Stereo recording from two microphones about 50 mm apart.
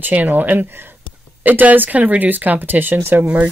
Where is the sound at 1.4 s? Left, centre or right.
Right.